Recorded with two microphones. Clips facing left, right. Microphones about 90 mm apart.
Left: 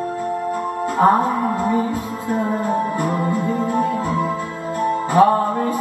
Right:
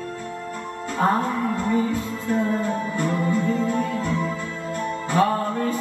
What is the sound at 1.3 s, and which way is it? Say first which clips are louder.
Music: left 4 dB; 45° left (ahead or behind).